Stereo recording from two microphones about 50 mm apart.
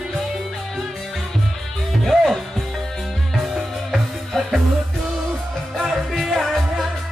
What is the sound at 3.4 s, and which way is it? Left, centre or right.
Music, centre.